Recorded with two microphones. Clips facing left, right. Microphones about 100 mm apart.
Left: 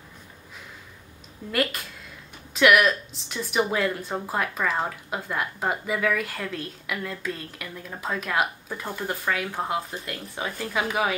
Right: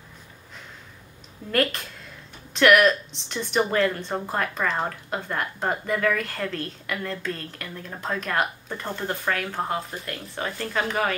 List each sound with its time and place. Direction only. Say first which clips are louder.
1.5 s speech: right 2 dB; 5° left (ahead or behind)